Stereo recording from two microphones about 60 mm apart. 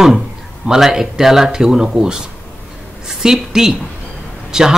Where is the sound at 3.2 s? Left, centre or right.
Centre.